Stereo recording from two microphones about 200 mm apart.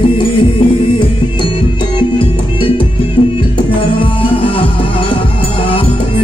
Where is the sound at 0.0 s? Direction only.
25° left (ahead or behind).